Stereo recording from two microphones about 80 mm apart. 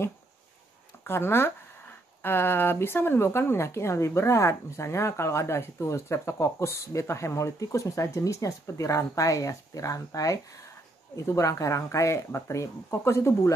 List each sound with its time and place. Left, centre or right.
1.0 s speech: left